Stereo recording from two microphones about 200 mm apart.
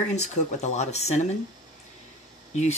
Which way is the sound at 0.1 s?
35° left (ahead or behind).